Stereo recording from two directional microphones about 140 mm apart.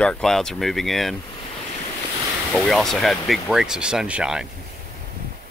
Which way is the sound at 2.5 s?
Centre (ahead or behind).